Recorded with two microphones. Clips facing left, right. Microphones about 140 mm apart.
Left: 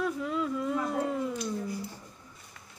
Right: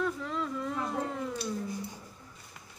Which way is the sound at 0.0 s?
5° left (ahead or behind).